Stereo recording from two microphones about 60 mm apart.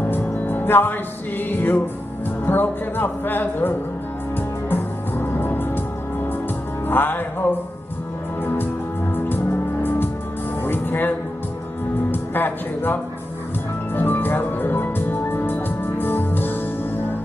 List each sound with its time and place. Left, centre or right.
0.0 s music: left
1.5 s speech: left
4.6 s music: left
6.9 s music: left
9.1 s music: left
12.1 s speech: left
13.9 s music: left